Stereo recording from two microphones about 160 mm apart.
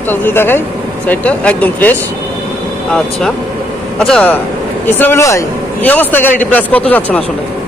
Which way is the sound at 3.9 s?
5° left (ahead or behind).